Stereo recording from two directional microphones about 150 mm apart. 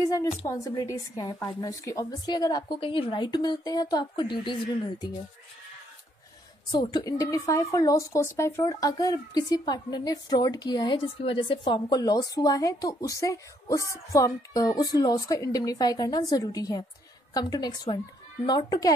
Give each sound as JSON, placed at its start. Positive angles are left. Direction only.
{"t": 0.5, "sound": "speech", "side_deg": 25}
{"t": 6.7, "sound": "speech", "side_deg": 30}